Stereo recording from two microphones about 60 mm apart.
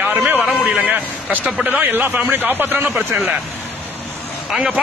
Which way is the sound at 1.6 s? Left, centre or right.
Right.